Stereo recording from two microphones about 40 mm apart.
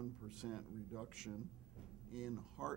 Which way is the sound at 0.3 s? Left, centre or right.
Centre.